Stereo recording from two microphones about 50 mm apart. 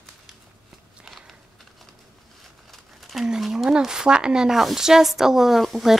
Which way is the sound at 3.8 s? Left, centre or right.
Centre.